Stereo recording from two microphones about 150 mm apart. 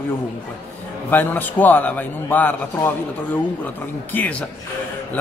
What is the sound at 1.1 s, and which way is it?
A man's voice, 10° left (ahead or behind).